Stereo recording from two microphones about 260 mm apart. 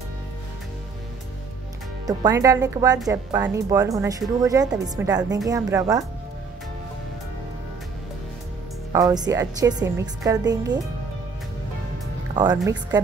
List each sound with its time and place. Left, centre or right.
2.0 s a woman's voice: centre
8.9 s a woman's voice: centre
12.4 s a woman's voice: centre